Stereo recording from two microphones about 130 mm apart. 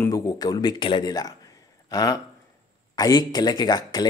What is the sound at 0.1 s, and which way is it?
Speech, 30° left (ahead or behind).